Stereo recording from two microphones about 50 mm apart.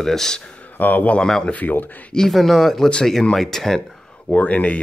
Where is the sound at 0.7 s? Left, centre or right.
Left.